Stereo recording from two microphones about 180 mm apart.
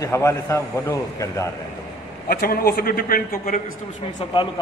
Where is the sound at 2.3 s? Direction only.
55° left (ahead or behind).